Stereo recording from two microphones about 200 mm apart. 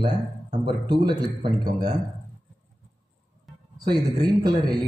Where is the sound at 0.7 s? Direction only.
20° right (ahead or behind).